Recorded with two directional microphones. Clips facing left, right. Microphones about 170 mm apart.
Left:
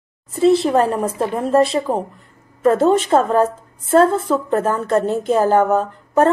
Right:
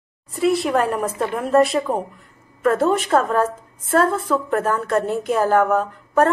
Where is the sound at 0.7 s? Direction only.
30° left (ahead or behind).